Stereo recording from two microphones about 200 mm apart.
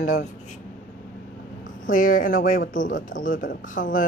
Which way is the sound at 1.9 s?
40° left (ahead or behind).